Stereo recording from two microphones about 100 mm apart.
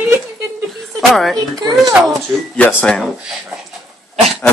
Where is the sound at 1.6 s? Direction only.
40° right (ahead or behind).